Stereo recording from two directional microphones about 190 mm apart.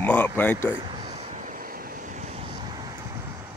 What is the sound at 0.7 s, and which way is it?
Vehicle, 25° right (ahead or behind).